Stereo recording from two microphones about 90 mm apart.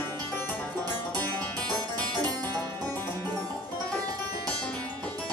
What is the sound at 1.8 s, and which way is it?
Music, 50° right (ahead or behind).